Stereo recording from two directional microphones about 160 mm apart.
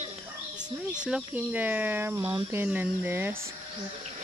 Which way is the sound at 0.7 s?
5° right (ahead or behind).